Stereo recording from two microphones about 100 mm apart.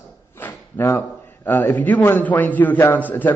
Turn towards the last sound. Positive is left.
turn(degrees=15)  # may be behind; listen again after turning